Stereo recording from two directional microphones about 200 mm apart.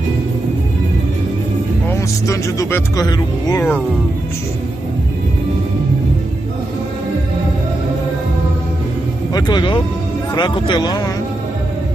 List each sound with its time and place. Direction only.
1.9 s speech: 15° left (ahead or behind)
9.3 s speech: 20° left (ahead or behind)